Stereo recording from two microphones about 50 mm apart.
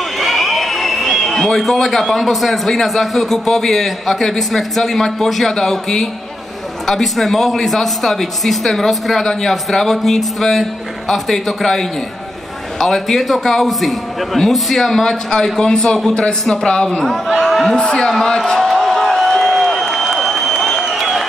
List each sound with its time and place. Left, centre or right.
0.2 s a man's voice: centre
17.3 s speech: centre
17.7 s a sound: centre
20.9 s applause: centre